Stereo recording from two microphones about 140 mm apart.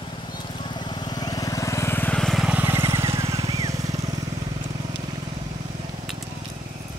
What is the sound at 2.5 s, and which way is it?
Vehicle, 15° right (ahead or behind).